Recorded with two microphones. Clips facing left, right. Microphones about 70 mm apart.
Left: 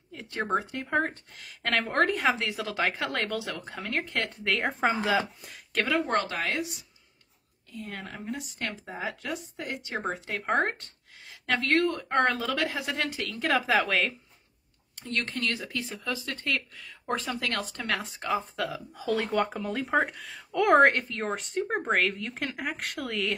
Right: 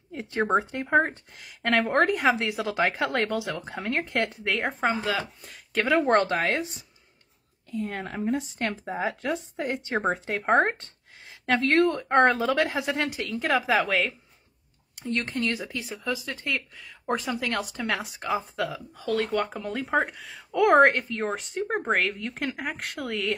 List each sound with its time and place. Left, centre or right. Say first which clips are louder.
0.1 s speech: right 5 dB; right
1.4 s a woman's voice: right 5 dB; centre
4.5 s speech: left 3 dB; centre
5.9 s speech: right 7 dB; right
13.4 s speech: right 1 dB; centre
15.0 s speech: right 3 dB; centre